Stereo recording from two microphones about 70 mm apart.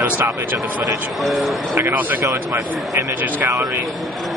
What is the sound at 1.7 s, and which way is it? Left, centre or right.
Speech, right.